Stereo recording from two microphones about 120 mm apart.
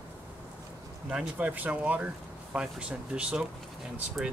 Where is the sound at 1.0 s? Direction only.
10° right (ahead or behind).